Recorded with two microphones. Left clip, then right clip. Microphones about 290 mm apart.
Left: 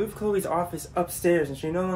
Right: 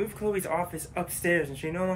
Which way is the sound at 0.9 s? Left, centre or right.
Centre.